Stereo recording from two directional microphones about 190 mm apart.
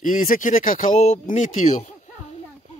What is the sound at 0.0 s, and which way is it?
Speech, 45° left (ahead or behind).